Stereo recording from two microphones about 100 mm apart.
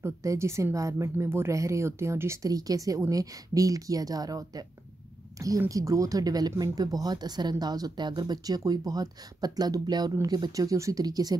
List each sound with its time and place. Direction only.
0.0 s speech: 30° right (ahead or behind)
5.7 s speech: 35° right (ahead or behind)